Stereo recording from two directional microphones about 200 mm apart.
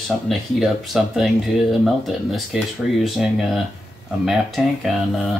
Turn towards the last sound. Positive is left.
turn(degrees=0)  # may be behind; listen again after turning